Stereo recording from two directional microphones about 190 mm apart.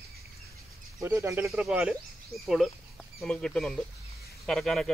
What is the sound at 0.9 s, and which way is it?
Speech, 15° right (ahead or behind).